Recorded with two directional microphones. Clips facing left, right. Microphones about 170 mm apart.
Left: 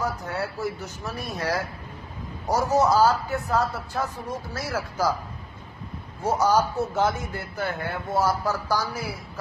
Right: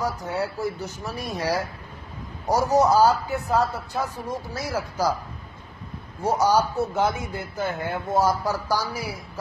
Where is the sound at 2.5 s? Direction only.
15° right (ahead or behind).